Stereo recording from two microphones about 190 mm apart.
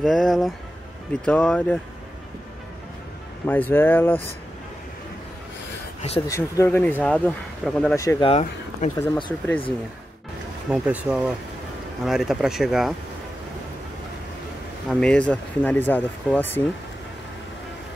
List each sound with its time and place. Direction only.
0.0 s speech: centre (ahead or behind)
3.4 s speech: 10° left (ahead or behind)
6.2 s speech: 15° left (ahead or behind)
8.2 s speech: 30° left (ahead or behind)
8.9 s speech: 15° left (ahead or behind)
10.7 s speech: 5° right (ahead or behind)
14.9 s speech: 5° left (ahead or behind)